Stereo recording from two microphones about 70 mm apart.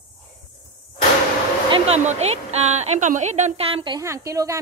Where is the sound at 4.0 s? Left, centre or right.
Right.